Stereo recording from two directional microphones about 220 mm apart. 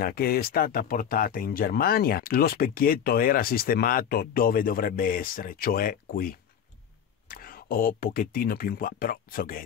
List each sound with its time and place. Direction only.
0.0 s speech: 45° left (ahead or behind)